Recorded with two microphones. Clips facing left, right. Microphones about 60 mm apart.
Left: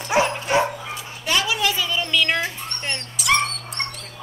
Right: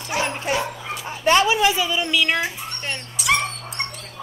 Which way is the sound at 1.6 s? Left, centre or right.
Centre.